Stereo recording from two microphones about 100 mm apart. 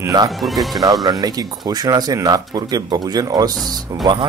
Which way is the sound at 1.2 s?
40° right (ahead or behind).